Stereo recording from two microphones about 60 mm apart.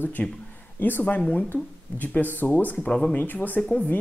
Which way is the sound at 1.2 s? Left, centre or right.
Centre.